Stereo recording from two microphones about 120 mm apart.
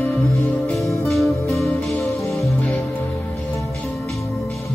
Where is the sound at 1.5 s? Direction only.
Centre (ahead or behind).